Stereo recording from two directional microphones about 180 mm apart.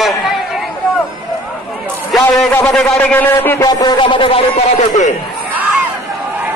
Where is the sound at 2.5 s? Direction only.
10° left (ahead or behind).